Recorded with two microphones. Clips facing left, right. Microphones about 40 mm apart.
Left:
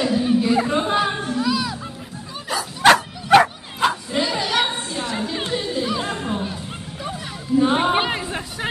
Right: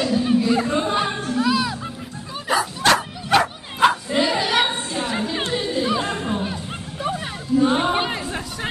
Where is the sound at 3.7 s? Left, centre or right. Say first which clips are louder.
Right 3 dB; centre.